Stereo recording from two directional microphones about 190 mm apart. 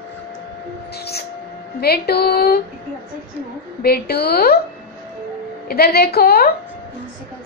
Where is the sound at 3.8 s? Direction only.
55° left (ahead or behind).